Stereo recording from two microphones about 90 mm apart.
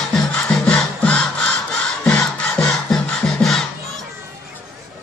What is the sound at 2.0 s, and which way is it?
Music, 15° left (ahead or behind).